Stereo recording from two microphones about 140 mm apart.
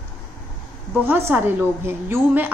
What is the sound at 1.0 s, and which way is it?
A woman's voice, 15° right (ahead or behind).